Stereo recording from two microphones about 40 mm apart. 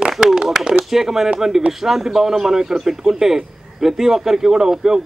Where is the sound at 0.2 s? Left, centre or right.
Centre.